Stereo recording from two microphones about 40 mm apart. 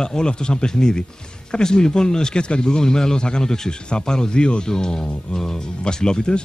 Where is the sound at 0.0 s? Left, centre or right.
Centre.